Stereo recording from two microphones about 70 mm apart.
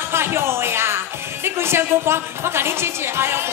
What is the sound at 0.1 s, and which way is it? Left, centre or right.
Speech, right.